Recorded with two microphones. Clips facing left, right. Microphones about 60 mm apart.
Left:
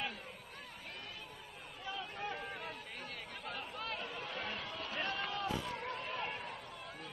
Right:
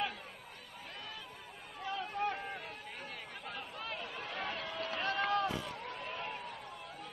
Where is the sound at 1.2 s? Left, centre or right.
Right.